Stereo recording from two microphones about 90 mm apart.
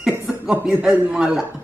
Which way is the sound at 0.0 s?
5° right (ahead or behind).